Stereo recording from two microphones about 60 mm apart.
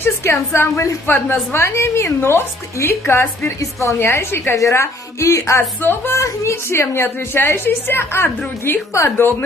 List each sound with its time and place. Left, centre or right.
0.0 s a woman's voice: left
5.6 s speech: left
6.1 s a woman's voice: left